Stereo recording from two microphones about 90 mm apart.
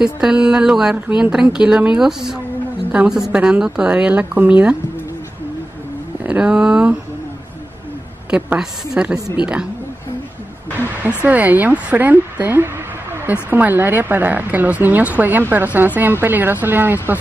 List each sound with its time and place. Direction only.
0.0 s a woman's voice: 10° right (ahead or behind)
6.2 s a woman's voice: 10° right (ahead or behind)
8.3 s a woman's voice: 20° right (ahead or behind)
11.2 s speech: 20° right (ahead or behind)